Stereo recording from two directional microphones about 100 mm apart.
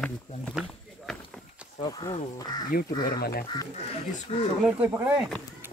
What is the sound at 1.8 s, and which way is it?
Speech, 40° left (ahead or behind).